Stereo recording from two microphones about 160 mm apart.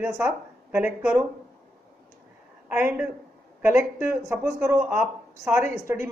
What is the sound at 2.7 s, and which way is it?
Speech, 10° right (ahead or behind).